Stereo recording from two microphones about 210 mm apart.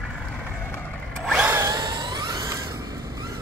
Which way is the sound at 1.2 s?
5° right (ahead or behind).